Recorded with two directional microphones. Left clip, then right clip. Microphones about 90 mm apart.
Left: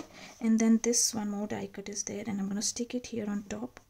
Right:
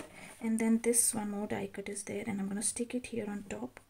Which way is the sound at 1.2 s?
25° left (ahead or behind).